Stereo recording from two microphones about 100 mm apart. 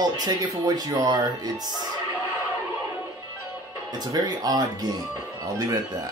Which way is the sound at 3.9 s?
45° right (ahead or behind).